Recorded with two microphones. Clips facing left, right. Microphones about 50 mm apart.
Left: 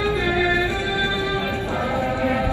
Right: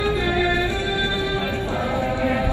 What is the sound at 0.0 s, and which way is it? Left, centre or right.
Music, left.